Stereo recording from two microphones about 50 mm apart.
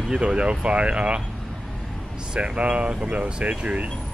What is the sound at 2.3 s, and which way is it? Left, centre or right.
Speech, right.